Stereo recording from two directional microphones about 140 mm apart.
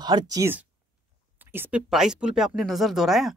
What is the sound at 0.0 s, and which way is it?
Speech, 30° right (ahead or behind).